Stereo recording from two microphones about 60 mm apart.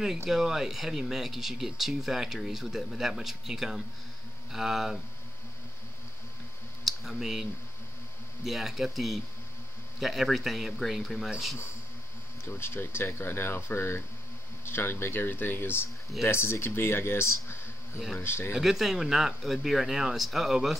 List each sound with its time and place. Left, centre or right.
0.3 s speech: centre
6.8 s a sound: centre
8.5 s speech: centre
12.4 s speech: left
18.5 s speech: centre